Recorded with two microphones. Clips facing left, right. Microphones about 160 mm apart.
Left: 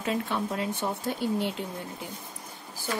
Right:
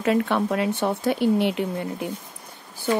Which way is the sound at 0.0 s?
70° right (ahead or behind).